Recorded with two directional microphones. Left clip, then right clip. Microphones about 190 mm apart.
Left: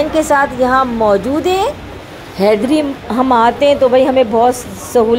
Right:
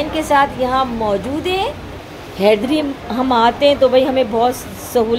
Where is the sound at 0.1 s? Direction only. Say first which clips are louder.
Left 2 dB; 15° left (ahead or behind).